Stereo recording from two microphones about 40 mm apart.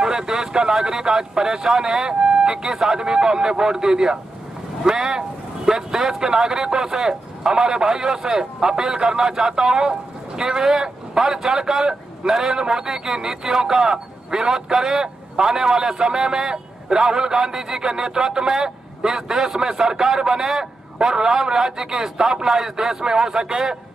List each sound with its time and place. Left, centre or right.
0.0 s speech: centre